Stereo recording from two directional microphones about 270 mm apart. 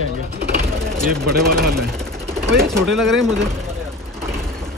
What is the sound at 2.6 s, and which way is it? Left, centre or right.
Speech, centre.